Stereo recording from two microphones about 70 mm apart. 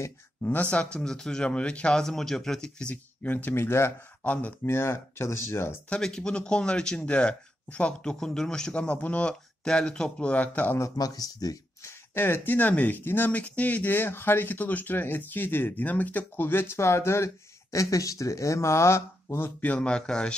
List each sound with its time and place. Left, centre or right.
0.4 s speech: left
3.3 s speech: left
4.2 s speech: left
4.6 s speech: left
5.9 s speech: centre
11.0 s speech: left
11.8 s speech: left
19.6 s speech: centre